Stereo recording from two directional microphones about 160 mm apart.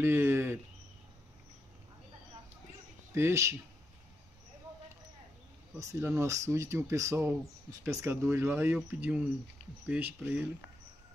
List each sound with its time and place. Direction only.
0.0 s speech: 15° right (ahead or behind)
3.2 s speech: 15° right (ahead or behind)
5.8 s speech: 20° right (ahead or behind)